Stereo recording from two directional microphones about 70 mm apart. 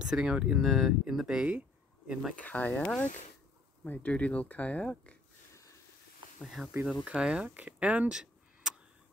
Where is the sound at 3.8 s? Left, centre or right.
Left.